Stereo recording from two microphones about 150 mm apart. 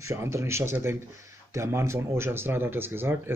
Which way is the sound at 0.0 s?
20° right (ahead or behind).